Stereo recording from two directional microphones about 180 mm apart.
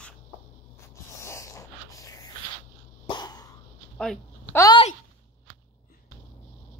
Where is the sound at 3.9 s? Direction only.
5° left (ahead or behind).